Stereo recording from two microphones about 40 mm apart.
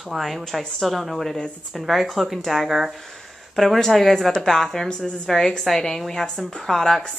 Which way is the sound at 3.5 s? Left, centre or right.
Centre.